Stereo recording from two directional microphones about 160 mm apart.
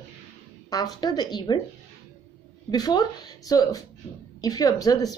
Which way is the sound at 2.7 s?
25° left (ahead or behind).